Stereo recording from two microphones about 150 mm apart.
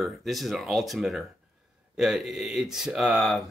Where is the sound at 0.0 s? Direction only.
Centre (ahead or behind).